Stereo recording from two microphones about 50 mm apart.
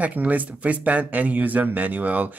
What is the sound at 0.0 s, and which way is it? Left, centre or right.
Speech, right.